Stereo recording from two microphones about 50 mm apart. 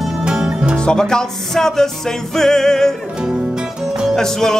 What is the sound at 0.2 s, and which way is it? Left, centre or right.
Music, centre.